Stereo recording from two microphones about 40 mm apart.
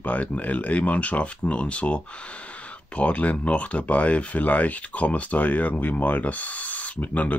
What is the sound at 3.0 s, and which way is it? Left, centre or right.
Speech, left.